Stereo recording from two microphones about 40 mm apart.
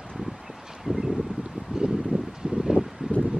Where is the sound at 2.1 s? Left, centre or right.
Right.